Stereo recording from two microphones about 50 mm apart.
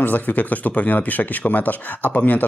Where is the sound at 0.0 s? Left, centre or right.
Left.